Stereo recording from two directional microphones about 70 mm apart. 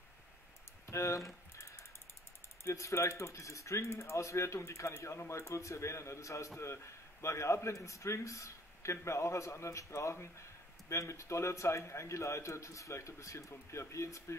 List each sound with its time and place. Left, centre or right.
0.8 s speech: left
2.6 s speech: left